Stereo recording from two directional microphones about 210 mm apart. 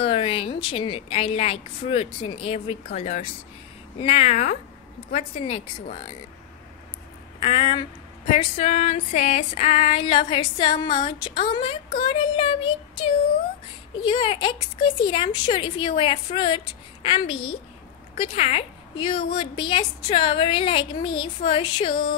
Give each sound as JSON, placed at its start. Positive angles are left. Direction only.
{"t": 0.0, "sound": "female singing", "side_deg": 25}
{"t": 4.0, "sound": "speech", "side_deg": 30}
{"t": 5.1, "sound": "female singing", "side_deg": 30}
{"t": 7.3, "sound": "speech", "side_deg": 25}
{"t": 8.3, "sound": "female singing", "side_deg": 30}